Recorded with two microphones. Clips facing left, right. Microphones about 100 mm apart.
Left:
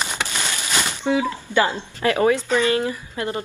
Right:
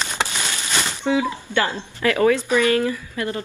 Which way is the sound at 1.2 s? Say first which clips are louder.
Left 2 dB; 15° left (ahead or behind).